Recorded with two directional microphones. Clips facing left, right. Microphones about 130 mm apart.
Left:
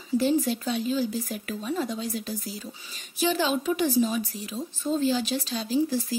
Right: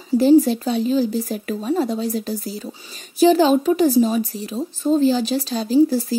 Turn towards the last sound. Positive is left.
turn(degrees=-40)  # may be behind; listen again after turning